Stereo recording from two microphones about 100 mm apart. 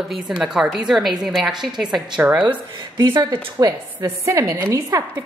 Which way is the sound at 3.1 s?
40° right (ahead or behind).